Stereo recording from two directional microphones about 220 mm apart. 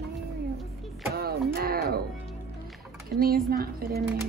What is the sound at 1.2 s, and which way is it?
Speech, 45° right (ahead or behind).